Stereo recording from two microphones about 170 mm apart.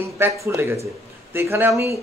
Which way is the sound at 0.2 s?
15° right (ahead or behind).